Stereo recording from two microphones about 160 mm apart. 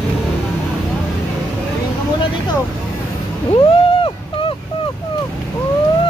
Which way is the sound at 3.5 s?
30° left (ahead or behind).